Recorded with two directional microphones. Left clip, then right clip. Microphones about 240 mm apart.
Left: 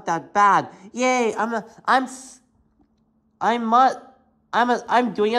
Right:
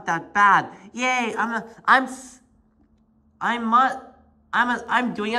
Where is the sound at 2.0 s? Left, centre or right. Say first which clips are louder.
Right 1 dB; left.